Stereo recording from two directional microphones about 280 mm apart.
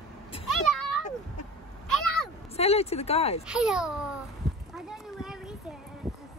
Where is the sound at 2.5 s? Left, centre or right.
Left.